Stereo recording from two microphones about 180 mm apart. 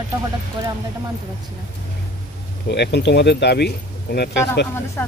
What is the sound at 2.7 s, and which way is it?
Speech, 70° left (ahead or behind).